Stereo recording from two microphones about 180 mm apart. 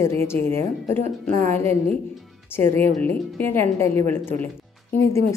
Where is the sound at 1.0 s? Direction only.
40° right (ahead or behind).